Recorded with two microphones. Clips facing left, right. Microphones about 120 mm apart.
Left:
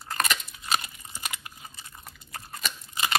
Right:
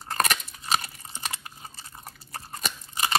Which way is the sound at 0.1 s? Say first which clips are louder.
Right 3 dB; 35° right (ahead or behind).